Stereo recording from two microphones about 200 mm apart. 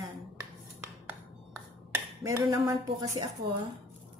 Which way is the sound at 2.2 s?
15° right (ahead or behind).